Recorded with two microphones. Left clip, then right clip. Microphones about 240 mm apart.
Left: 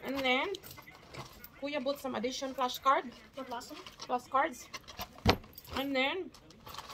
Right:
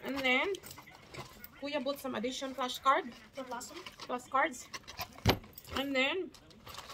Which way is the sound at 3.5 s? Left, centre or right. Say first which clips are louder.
Left 1 dB; right.